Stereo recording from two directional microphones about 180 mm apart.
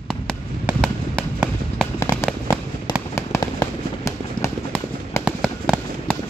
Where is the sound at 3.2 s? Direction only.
15° left (ahead or behind).